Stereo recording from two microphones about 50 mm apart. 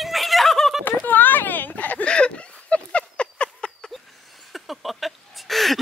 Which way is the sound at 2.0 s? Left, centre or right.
Centre.